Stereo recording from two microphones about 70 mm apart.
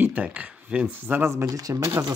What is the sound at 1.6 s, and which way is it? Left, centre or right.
Speech, right.